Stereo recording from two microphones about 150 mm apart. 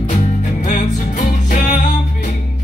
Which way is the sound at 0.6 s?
50° left (ahead or behind).